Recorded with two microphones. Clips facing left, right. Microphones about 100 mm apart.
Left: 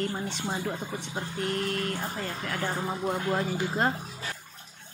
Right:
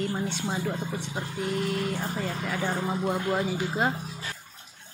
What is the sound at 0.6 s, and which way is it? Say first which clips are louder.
Speech: right 2 dB; centre (ahead or behind).